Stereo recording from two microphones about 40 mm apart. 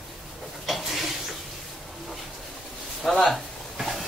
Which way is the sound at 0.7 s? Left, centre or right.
Centre.